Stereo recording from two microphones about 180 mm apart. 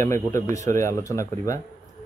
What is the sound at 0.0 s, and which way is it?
Speech, 15° left (ahead or behind).